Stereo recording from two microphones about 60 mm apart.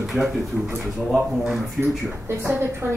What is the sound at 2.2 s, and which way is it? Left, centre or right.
Speech, right.